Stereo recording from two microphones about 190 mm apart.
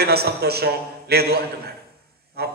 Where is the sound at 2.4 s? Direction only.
55° right (ahead or behind).